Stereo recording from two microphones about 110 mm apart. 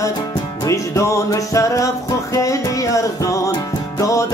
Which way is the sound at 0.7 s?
30° left (ahead or behind).